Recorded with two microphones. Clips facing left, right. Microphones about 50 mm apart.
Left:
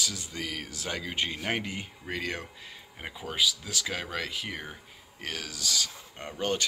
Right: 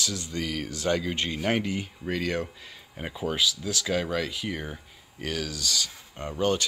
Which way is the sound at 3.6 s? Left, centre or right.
Centre.